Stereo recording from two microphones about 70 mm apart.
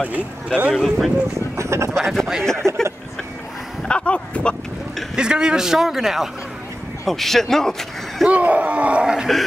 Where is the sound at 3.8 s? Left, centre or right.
Centre.